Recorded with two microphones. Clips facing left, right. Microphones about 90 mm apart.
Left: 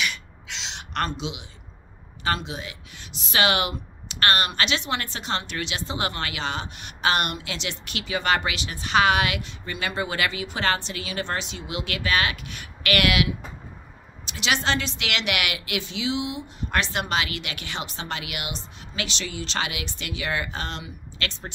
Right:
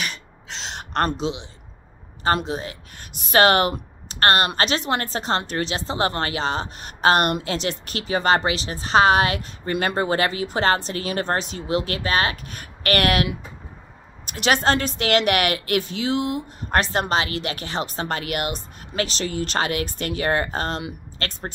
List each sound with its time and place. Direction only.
0.0 s beatboxing: 40° right (ahead or behind)
2.2 s a woman's voice: 40° right (ahead or behind)